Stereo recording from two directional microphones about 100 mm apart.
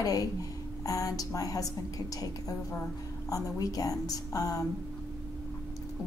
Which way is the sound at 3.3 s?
35° left (ahead or behind).